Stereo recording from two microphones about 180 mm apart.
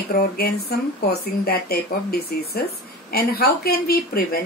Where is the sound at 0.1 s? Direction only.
55° left (ahead or behind).